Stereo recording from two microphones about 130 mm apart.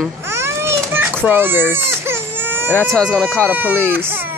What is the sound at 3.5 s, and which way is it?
Speech, 15° right (ahead or behind).